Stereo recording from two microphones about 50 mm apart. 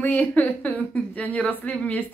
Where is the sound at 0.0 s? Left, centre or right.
Left.